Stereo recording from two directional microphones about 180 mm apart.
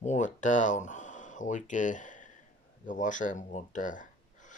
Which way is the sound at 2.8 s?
45° left (ahead or behind).